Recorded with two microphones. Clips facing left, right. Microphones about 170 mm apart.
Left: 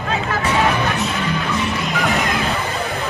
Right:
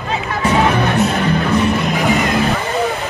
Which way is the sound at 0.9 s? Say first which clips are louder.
Right 6 dB; 40° right (ahead or behind).